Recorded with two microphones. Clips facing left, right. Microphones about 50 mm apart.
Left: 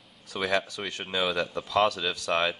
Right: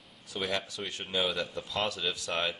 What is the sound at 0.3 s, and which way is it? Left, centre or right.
Speech, left.